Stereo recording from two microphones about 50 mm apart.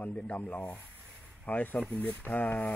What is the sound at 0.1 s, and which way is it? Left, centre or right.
A man's voice, left.